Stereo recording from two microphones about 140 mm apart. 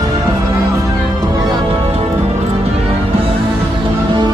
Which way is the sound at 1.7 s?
45° right (ahead or behind).